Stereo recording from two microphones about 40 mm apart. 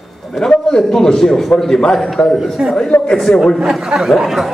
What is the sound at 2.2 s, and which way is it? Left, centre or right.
Speech, left.